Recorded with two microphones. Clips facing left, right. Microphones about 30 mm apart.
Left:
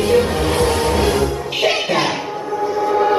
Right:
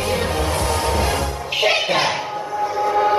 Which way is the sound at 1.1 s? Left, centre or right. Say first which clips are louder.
Left 4 dB; centre.